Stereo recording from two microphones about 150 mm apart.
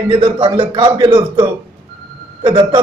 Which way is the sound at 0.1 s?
35° right (ahead or behind).